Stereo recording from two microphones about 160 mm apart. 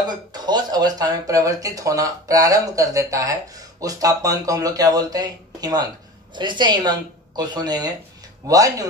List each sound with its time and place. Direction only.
0.0 s speech: 25° right (ahead or behind)